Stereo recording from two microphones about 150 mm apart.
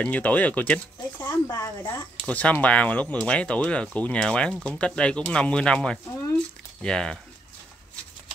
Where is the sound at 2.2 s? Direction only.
10° left (ahead or behind).